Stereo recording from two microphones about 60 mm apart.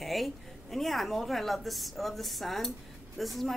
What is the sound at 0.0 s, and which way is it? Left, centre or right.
A woman's voice, centre.